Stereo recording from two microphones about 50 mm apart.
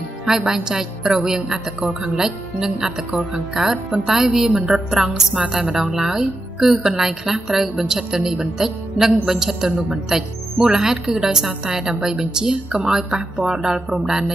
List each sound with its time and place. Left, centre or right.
0.2 s a woman's voice: centre